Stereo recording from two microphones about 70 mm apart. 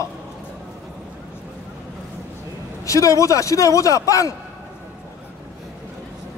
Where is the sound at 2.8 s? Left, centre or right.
Left.